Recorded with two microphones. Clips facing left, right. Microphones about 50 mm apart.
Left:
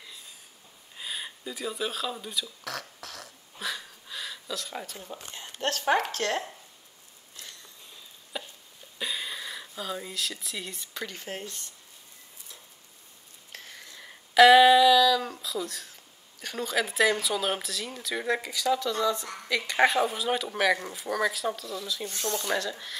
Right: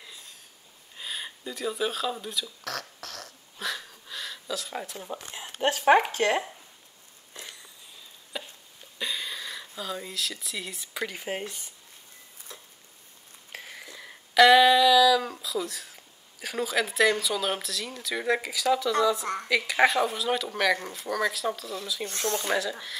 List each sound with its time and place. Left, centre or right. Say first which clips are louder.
0.9 s a sound: even; centre
5.1 s speech: right 3 dB; centre
8.3 s hiccup: even; centre
8.9 s a sound: right 1 dB; centre
10.9 s speech: right 8 dB; centre
13.5 s a sound: right 4 dB; centre
19.4 s speech: right 1 dB; centre
22.1 s speech: right 4 dB; right
22.5 s speech: right 2 dB; centre